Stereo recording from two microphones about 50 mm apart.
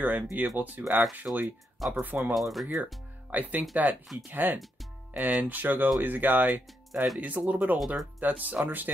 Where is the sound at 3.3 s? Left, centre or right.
Right.